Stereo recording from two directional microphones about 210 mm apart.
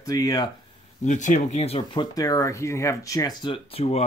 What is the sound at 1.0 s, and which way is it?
Speech, 35° left (ahead or behind).